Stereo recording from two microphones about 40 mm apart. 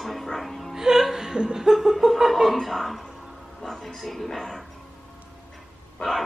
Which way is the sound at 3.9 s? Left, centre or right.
Centre.